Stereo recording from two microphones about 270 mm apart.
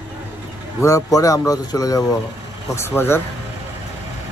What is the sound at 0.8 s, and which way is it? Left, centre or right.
Speech, centre.